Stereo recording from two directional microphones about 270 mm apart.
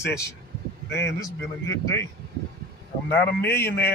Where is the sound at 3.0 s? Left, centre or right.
Centre.